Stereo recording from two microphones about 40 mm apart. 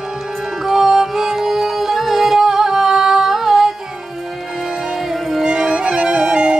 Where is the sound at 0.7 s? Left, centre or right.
Centre.